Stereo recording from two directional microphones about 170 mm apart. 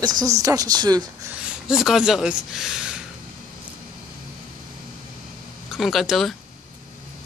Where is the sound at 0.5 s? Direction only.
20° right (ahead or behind).